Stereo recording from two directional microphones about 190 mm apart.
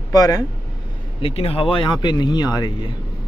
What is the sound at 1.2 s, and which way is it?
Speech, 30° left (ahead or behind).